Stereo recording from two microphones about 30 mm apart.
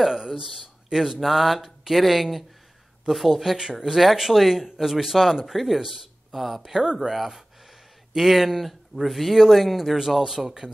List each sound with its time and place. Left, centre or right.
0.1 s speech: right
0.8 s speech: centre
9.9 s speech: centre